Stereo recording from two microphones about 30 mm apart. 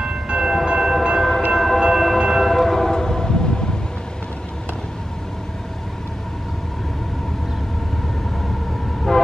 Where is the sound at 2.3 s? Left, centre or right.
Centre; by 3.6 s left.